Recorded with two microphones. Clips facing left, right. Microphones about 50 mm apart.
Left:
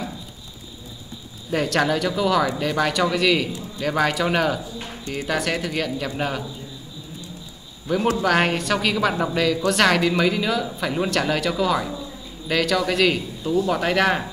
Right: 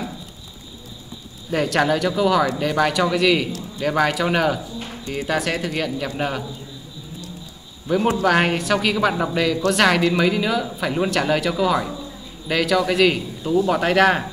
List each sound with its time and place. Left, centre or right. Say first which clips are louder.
1.5 s speech: right 2 dB; centre
8.2 s speech: right 2 dB; centre